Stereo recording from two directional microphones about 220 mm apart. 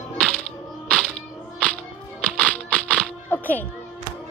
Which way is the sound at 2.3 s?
5° left (ahead or behind).